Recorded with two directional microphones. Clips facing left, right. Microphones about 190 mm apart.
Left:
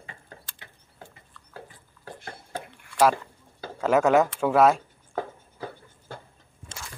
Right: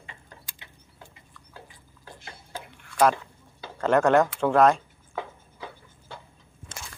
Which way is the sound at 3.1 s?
45° left (ahead or behind).